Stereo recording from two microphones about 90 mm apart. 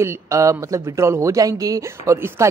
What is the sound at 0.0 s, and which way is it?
Speech, 30° right (ahead or behind).